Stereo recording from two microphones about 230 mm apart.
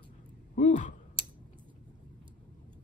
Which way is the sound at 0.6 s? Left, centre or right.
Left.